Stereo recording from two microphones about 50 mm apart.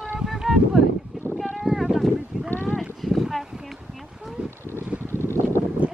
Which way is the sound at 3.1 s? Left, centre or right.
Centre.